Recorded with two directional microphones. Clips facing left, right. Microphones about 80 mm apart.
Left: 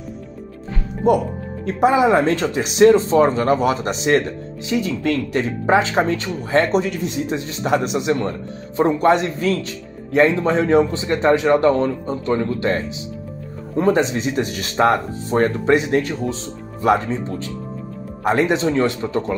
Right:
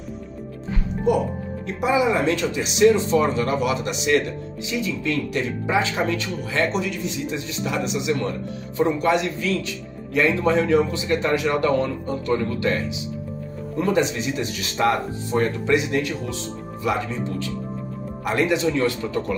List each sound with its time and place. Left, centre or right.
1.0 s speech: left
5.9 s speech: left
8.2 s speech: left
18.2 s speech: left